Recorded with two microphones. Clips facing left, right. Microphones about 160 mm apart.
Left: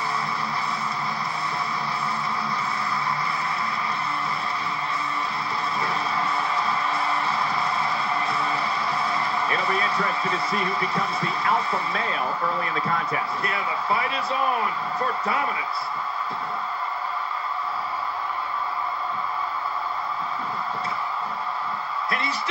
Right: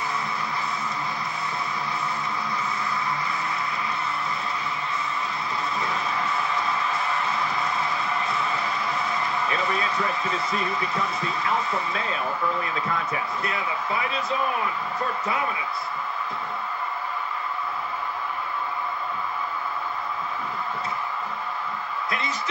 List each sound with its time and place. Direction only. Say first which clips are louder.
6.7 s music: left 1 dB; 35° left (ahead or behind)
8.3 s music: left 1 dB; 35° left (ahead or behind)
9.4 s speech: left 1 dB; 35° left (ahead or behind)